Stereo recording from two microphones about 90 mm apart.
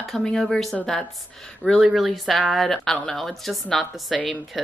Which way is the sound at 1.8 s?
5° right (ahead or behind).